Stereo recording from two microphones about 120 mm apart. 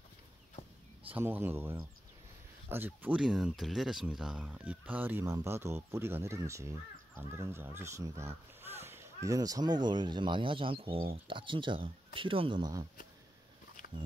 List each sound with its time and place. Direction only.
1.1 s speech: 15° right (ahead or behind); by 12.8 s 40° right (ahead or behind)